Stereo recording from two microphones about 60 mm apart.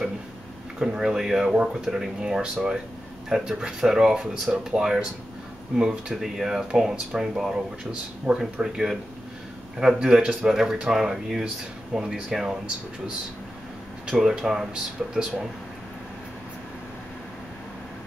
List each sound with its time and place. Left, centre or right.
0.7 s speech: centre
8.3 s speech: centre
8.6 s speech: centre